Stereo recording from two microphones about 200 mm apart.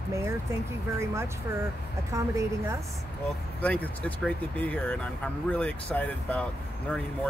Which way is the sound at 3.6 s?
5° left (ahead or behind).